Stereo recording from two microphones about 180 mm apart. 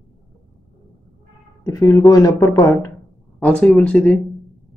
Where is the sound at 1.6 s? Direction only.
15° left (ahead or behind).